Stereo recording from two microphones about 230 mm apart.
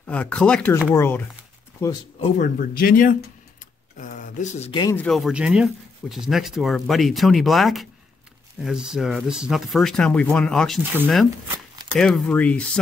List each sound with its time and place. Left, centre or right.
0.0 s speech: centre
2.3 s speech: left
4.9 s speech: centre
11.9 s speech: centre